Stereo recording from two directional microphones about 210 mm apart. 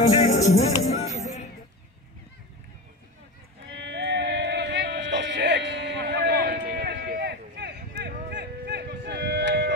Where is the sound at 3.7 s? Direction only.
60° right (ahead or behind).